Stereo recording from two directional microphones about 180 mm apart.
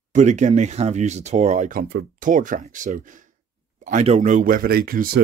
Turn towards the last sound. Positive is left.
turn(degrees=-55)  # may be behind; listen again after turning